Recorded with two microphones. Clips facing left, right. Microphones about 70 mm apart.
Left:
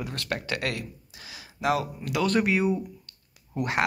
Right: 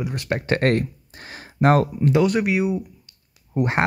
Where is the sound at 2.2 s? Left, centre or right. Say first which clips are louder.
Left 1 dB; centre.